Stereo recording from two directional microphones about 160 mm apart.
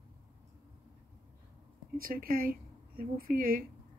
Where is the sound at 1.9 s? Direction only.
65° right (ahead or behind).